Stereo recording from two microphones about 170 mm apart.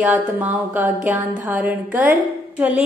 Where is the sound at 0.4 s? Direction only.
10° right (ahead or behind).